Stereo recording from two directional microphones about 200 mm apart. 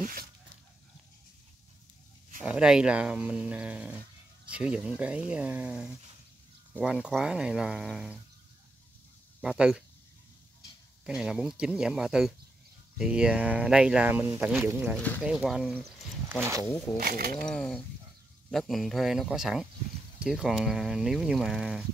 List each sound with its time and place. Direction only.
0.0 s dog: 45° right (ahead or behind)
2.4 s speech: 5° right (ahead or behind)
9.4 s speech: 5° right (ahead or behind)
11.1 s speech: 5° right (ahead or behind)
15.0 s speech: 10° left (ahead or behind)
15.2 s speech: 5° right (ahead or behind)
17.0 s speech: 50° right (ahead or behind)
17.4 s speech: 5° left (ahead or behind)